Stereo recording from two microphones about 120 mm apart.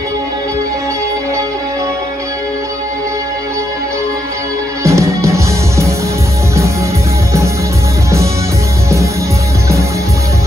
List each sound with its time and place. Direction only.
4.8 s music: 25° right (ahead or behind)